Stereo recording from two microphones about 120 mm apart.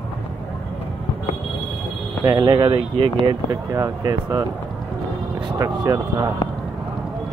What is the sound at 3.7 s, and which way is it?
Speech, 30° right (ahead or behind).